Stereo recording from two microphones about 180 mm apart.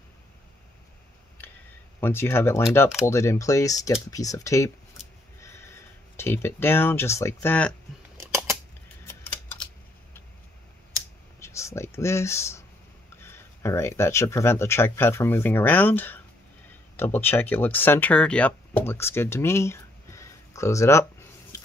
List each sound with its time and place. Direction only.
2.0 s speech: 10° left (ahead or behind)
6.1 s speech: 15° left (ahead or behind)
11.3 s speech: 15° left (ahead or behind)